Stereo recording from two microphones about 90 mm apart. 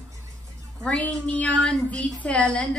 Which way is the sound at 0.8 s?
10° left (ahead or behind).